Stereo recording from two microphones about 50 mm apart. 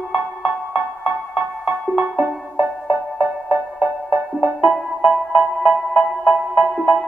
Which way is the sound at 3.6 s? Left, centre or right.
Right.